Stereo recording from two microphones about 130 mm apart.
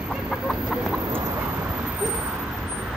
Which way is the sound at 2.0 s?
5° right (ahead or behind).